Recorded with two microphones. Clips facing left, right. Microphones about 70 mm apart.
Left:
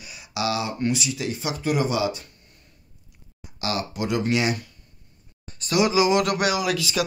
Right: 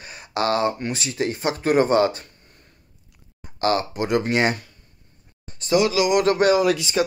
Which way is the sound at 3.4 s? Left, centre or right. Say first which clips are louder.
Right 7 dB; right.